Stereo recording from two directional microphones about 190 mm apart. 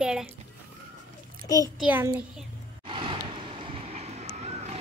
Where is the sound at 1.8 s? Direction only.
10° right (ahead or behind).